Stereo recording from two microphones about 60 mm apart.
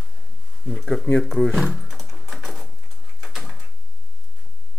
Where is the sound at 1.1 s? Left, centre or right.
Centre.